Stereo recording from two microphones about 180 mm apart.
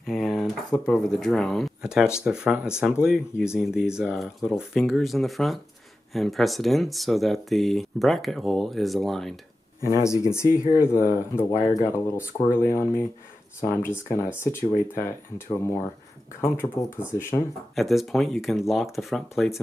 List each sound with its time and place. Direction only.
0.0 s a sound: centre (ahead or behind)
0.8 s speech: 5° left (ahead or behind)
9.8 s speech: 20° right (ahead or behind)
10.0 s speech: 15° left (ahead or behind)
17.7 s speech: centre (ahead or behind)